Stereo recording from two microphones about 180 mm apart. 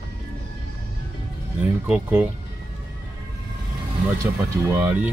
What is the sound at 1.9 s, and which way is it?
Speech, 10° right (ahead or behind).